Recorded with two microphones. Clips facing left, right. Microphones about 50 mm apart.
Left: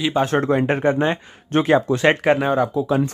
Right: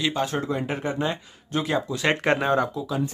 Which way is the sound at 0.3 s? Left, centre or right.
Left.